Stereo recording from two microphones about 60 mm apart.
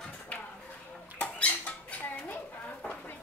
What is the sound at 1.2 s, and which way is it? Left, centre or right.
Rodents, left.